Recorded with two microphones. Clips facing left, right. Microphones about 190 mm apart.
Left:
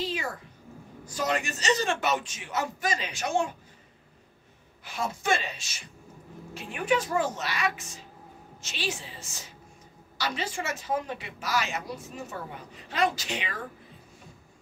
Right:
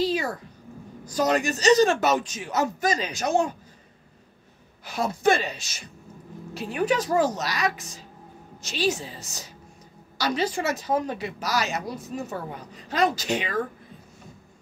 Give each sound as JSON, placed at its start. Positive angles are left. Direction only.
{"t": 0.0, "sound": "a man's voice", "side_deg": -40}
{"t": 4.8, "sound": "a man's voice", "side_deg": -40}